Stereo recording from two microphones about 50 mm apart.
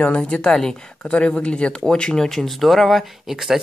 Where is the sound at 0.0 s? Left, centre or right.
Left.